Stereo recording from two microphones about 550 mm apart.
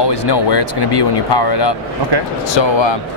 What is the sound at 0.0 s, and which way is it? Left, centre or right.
Speech, left.